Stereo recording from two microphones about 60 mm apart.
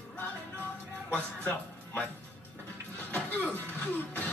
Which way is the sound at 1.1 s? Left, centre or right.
Left.